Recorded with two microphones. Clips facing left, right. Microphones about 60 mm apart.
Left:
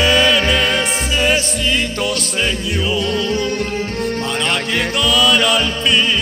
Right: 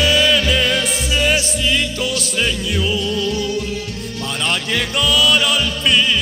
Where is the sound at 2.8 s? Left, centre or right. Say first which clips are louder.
Left 2 dB; centre.